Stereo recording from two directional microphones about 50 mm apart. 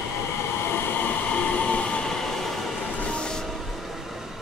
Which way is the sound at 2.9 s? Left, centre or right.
Left.